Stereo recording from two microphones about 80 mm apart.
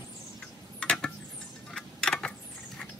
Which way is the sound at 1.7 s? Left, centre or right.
Centre.